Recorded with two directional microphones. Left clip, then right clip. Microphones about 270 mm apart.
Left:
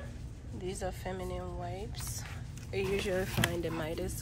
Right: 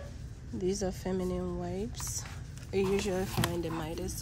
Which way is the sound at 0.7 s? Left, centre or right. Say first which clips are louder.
Right 5 dB; right.